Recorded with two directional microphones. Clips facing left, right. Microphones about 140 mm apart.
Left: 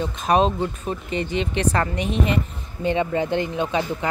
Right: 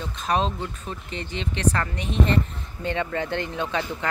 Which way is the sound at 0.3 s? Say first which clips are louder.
Left 6 dB; 15° left (ahead or behind).